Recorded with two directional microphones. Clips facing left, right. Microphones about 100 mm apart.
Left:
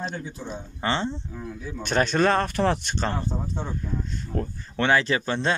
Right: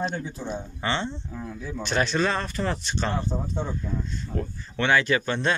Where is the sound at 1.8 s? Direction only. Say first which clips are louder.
Left 3 dB; 45° left (ahead or behind); by 3.0 s 65° left (ahead or behind).